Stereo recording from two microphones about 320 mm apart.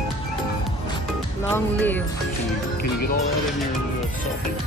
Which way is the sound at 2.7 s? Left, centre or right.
Left.